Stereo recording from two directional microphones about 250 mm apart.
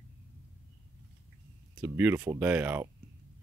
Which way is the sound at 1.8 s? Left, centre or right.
Centre.